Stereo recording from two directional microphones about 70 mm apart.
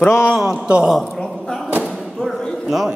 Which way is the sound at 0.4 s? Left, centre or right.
Centre.